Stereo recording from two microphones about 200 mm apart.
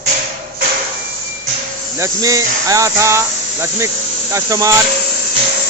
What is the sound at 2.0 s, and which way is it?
Speech, 15° right (ahead or behind).